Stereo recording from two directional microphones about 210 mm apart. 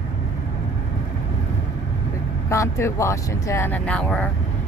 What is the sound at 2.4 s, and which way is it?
Speech, 15° left (ahead or behind).